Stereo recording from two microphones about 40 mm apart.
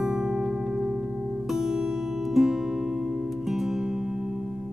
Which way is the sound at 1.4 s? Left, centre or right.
Centre.